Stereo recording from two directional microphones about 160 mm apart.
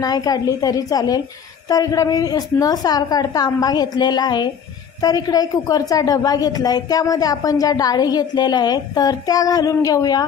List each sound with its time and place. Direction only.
0.0 s a woman's voice: 25° left (ahead or behind)